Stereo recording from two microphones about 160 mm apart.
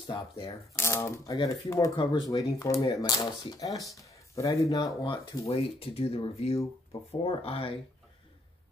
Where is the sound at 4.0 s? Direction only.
20° left (ahead or behind).